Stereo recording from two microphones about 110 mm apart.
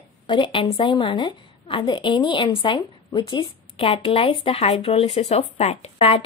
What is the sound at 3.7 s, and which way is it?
A woman's voice, 60° left (ahead or behind).